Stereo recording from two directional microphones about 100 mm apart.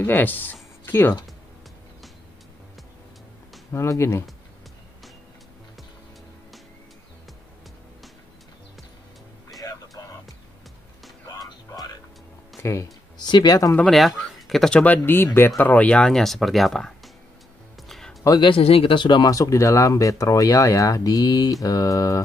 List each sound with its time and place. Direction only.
0.0 s speech: 20° left (ahead or behind)
3.7 s speech: 25° left (ahead or behind)
9.6 s a sound: 35° left (ahead or behind)
11.4 s music: 40° left (ahead or behind)
12.6 s speech: 30° left (ahead or behind)
13.2 s speech: 45° left (ahead or behind)
13.8 s speech: centre (ahead or behind)
17.8 s music: centre (ahead or behind)
18.4 s speech: 65° left (ahead or behind); by 22.2 s 35° left (ahead or behind)